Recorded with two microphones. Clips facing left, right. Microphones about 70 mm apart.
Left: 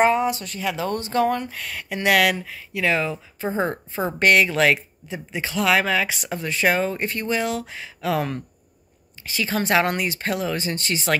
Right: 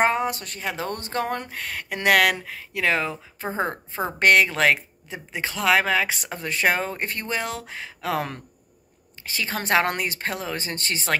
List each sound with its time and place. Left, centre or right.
0.0 s speech: right